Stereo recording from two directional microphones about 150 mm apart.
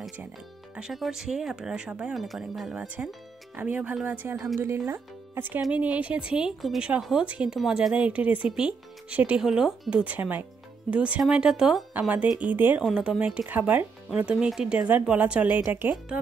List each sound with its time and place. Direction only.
0.7 s a woman's voice: 5° right (ahead or behind)